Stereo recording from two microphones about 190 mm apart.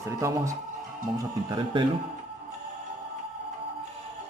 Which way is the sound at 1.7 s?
25° right (ahead or behind).